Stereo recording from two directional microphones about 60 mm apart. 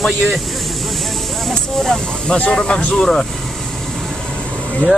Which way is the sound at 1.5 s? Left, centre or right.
Centre.